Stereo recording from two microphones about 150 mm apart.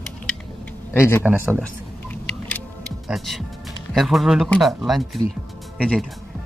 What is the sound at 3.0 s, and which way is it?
A man's voice, centre (ahead or behind).